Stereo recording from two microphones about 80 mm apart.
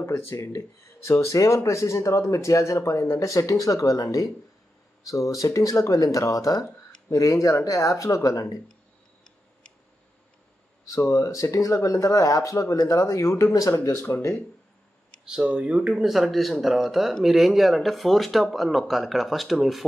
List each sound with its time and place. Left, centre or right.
0.0 s speech: left
11.0 s speech: left
15.2 s speech: centre